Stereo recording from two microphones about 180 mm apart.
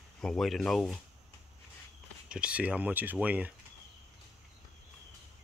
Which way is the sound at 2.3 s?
5° right (ahead or behind).